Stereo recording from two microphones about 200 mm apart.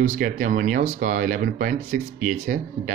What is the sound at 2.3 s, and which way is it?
Speech, 35° right (ahead or behind).